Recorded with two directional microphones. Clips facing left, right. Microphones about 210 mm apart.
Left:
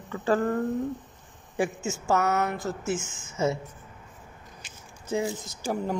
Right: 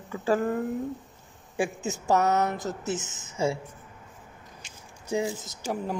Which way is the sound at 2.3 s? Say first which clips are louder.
Right 1 dB; 20° right (ahead or behind).